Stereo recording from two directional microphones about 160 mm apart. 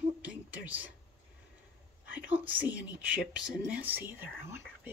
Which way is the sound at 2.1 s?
10° right (ahead or behind).